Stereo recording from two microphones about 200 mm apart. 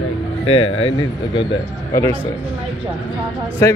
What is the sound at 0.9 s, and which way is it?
Speech, 25° left (ahead or behind).